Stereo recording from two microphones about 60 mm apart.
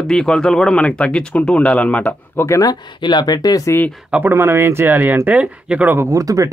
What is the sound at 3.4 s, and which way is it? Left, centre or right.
Speech, left.